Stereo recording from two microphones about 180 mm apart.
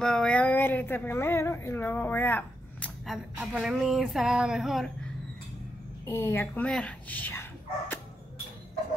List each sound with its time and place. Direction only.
0.0 s speech: 5° left (ahead or behind)
3.1 s speech: 5° right (ahead or behind)
6.0 s a woman's voice: 15° left (ahead or behind)